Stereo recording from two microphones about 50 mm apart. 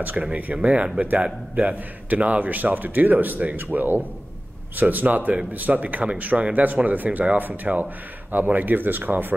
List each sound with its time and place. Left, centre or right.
0.2 s speech: right
6.3 s speech: right
6.6 s speech: right